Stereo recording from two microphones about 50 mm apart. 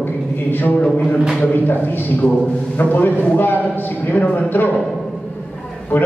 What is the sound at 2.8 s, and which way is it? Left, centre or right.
A man's voice, left.